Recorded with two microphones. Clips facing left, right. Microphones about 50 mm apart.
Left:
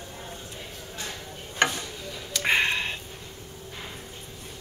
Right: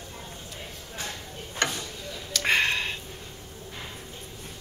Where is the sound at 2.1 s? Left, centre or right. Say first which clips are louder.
Even; centre.